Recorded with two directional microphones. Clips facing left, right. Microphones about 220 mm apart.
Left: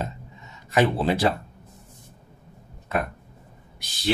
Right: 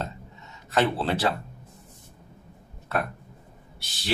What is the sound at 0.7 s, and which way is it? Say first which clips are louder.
Speech: left 3 dB; 15° left (ahead or behind).